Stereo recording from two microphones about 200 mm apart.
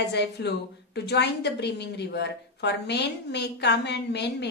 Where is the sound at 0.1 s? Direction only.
60° left (ahead or behind).